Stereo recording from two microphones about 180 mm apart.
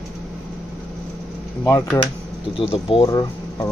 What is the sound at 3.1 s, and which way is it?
Speech, 20° left (ahead or behind).